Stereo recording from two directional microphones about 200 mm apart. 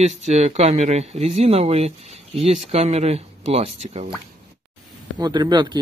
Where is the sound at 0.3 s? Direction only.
35° right (ahead or behind).